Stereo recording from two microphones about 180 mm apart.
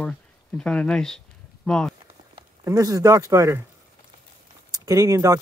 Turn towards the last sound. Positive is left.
turn(degrees=-20)  # may be behind; listen again after turning